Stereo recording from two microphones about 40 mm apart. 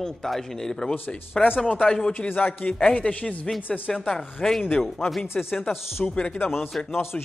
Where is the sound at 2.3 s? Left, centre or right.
Left.